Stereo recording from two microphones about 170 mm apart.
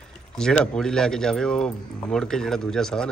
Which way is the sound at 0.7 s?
5° left (ahead or behind).